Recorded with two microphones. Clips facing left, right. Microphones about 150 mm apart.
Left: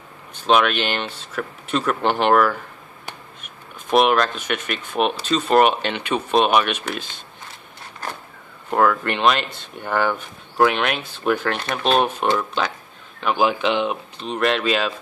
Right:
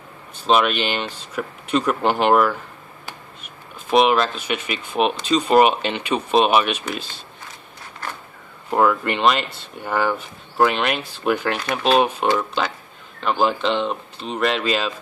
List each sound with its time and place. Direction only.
0.5 s speech: 5° right (ahead or behind)
3.9 s speech: centre (ahead or behind)
8.6 s speech: 5° right (ahead or behind)
13.2 s speech: 5° left (ahead or behind)